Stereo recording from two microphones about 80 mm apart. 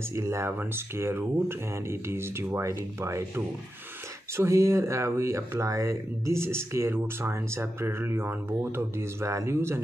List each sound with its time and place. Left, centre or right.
0.1 s speech: right